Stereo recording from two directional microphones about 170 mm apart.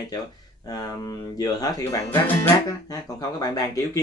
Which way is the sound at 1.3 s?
20° left (ahead or behind).